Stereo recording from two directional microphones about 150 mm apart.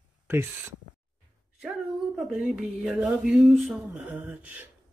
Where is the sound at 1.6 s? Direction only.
Centre (ahead or behind).